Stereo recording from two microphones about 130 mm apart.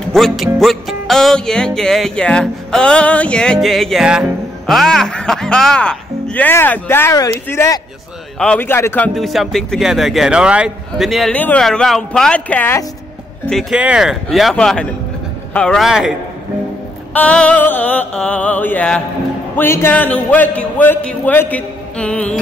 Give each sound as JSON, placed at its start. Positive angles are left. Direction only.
{"t": 0.1, "sound": "music", "side_deg": 0}
{"t": 7.4, "sound": "a man's voice", "side_deg": 20}
{"t": 9.1, "sound": "music", "side_deg": 0}
{"t": 11.3, "sound": "a man's voice", "side_deg": 10}
{"t": 13.5, "sound": "music", "side_deg": 0}
{"t": 17.1, "sound": "a man's voice", "side_deg": 10}